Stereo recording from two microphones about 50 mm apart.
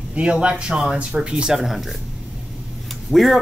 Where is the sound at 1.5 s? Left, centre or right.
Centre.